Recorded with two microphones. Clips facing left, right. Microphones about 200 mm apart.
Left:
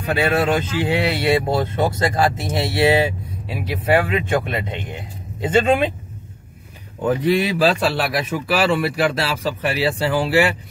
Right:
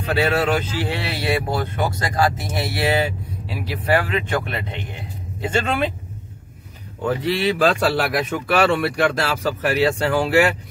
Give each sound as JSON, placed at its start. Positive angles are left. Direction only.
{"t": 0.1, "sound": "speech", "side_deg": 15}
{"t": 7.1, "sound": "speech", "side_deg": 15}
{"t": 7.8, "sound": "speech", "side_deg": 0}